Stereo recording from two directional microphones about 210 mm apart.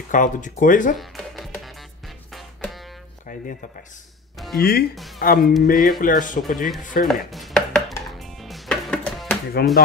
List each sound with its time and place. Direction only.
0.1 s speech: 40° left (ahead or behind)
0.9 s music: centre (ahead or behind)
4.6 s speech: 50° left (ahead or behind)
4.9 s speech: centre (ahead or behind)
5.2 s speech: 45° left (ahead or behind)
7.1 s chopping: centre (ahead or behind)
8.2 s music: centre (ahead or behind)
9.6 s speech: 50° left (ahead or behind)